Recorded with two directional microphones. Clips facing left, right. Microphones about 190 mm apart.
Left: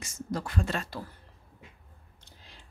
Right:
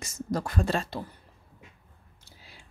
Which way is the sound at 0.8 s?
25° right (ahead or behind).